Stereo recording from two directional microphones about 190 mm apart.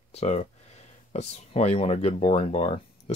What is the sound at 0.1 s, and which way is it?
Speech, 35° left (ahead or behind).